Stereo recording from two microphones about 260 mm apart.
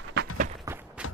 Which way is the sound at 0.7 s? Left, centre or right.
Centre.